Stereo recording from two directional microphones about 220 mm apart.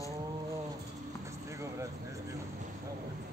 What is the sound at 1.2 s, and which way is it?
Vehicle, 15° right (ahead or behind).